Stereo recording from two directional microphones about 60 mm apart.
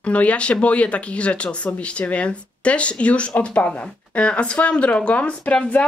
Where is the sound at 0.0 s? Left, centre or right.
Left.